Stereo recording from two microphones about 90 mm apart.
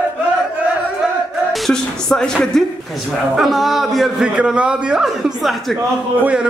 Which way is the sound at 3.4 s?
Centre (ahead or behind).